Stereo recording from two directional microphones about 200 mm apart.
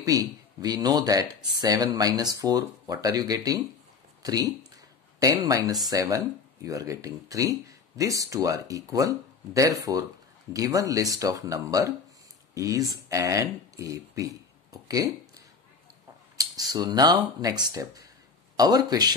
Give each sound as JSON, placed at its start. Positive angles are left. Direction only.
{"t": 0.0, "sound": "speech", "side_deg": -15}